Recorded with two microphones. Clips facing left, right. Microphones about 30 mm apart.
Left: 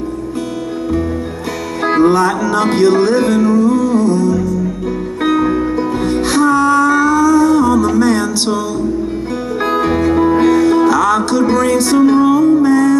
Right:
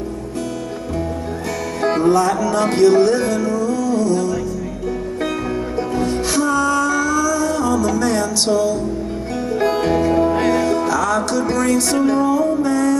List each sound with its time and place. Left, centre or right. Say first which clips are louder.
1.8 s music: left 4 dB; left
5.8 s music: left 4 dB; left
9.6 s music: left 3 dB; left